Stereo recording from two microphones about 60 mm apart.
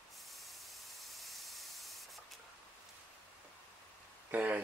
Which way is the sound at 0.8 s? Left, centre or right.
Centre.